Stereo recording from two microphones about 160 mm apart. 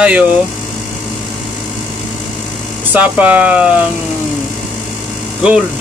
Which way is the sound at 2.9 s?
10° right (ahead or behind).